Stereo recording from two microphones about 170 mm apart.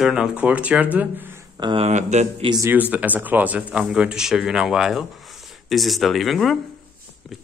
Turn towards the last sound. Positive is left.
turn(degrees=0)  # may be behind; listen again after turning